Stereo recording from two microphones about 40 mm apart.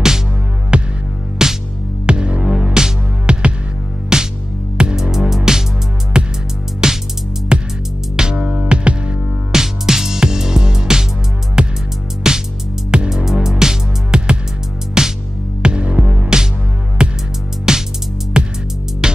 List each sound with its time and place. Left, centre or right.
0.7 s music: right
1.4 s music: centre
2.4 s music: centre
5.1 s music: centre
8.6 s music: right
9.5 s music: centre